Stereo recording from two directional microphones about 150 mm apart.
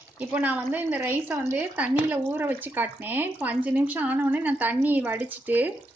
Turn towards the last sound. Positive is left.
turn(degrees=-10)  # may be behind; listen again after turning